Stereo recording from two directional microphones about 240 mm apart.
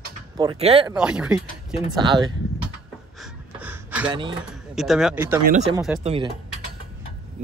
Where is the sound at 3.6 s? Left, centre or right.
Centre.